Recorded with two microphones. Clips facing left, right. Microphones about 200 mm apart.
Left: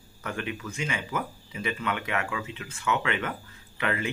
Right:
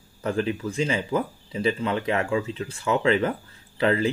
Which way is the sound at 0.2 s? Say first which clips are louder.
Right 8 dB; 30° right (ahead or behind).